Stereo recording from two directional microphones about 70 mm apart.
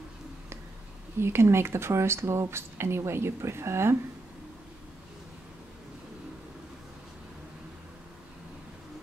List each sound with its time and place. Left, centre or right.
1.2 s speech: right